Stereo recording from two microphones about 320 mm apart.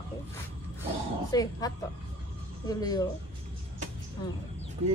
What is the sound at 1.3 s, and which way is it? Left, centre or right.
Speech, centre.